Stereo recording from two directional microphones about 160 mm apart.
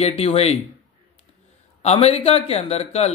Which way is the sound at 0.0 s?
40° left (ahead or behind).